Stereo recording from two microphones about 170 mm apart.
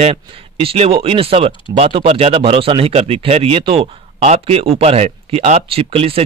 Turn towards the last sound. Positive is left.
turn(degrees=-35)  # may be behind; listen again after turning